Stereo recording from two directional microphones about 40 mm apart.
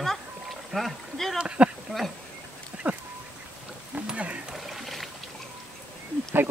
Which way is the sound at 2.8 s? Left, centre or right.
Right.